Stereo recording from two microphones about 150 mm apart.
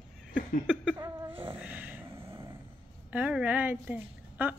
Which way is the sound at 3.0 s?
10° right (ahead or behind).